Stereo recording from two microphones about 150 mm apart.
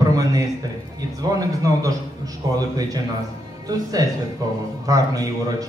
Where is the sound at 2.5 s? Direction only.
25° right (ahead or behind).